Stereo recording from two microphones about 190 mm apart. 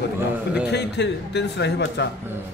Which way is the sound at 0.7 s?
60° left (ahead or behind).